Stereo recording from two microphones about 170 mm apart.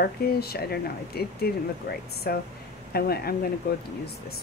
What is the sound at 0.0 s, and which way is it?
Speech, 65° left (ahead or behind).